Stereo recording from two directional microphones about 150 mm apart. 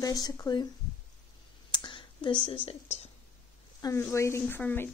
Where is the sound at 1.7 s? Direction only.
30° left (ahead or behind).